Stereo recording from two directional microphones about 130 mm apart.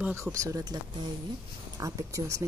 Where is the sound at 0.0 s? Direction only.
20° right (ahead or behind).